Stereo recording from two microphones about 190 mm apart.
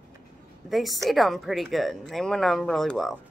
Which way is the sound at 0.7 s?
Centre (ahead or behind).